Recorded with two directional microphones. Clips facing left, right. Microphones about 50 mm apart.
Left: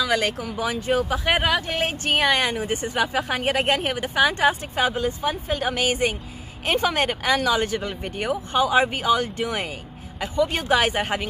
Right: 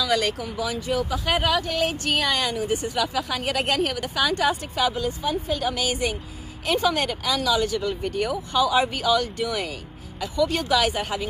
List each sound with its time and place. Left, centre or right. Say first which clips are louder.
0.0 s speech: left 1 dB; left